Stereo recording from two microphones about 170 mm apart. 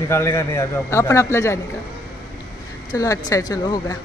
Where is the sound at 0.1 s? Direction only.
15° left (ahead or behind).